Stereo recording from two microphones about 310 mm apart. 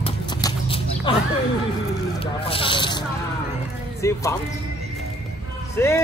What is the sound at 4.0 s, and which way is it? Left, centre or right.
Speech, centre.